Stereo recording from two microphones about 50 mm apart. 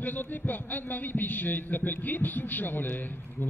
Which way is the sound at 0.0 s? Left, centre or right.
Left.